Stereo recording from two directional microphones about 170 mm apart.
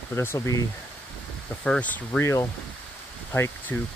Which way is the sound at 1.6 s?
5° left (ahead or behind).